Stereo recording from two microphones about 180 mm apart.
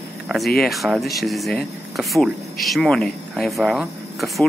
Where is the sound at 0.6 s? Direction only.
Centre (ahead or behind).